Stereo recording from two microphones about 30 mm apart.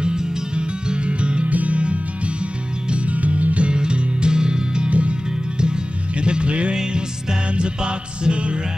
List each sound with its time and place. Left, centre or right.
0.0 s music: right
1.5 s music: right
3.1 s music: right
3.7 s music: right
4.8 s music: right
5.6 s music: right